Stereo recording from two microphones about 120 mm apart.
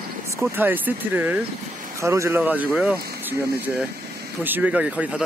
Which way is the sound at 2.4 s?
15° right (ahead or behind).